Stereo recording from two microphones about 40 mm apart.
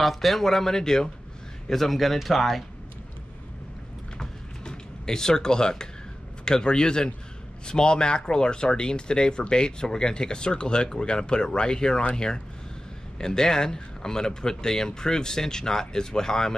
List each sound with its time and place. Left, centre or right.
0.0 s speech: centre
1.7 s speech: centre
4.2 s a sound: centre
6.4 s speech: left
13.2 s speech: centre